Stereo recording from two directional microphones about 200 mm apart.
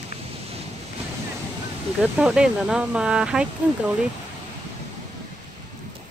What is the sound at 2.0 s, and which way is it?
Speech, 5° right (ahead or behind).